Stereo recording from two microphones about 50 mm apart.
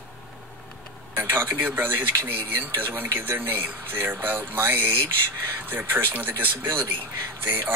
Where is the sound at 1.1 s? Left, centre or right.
Right.